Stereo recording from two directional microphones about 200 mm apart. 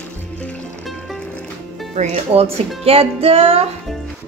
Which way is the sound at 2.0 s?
30° right (ahead or behind).